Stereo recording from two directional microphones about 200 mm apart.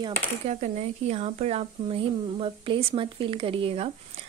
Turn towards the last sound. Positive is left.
turn(degrees=-30)  # may be behind; listen again after turning